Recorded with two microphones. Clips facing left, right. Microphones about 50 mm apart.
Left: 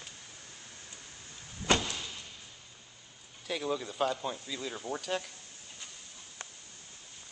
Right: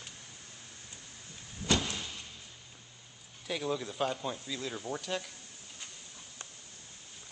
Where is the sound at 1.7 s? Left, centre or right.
Left.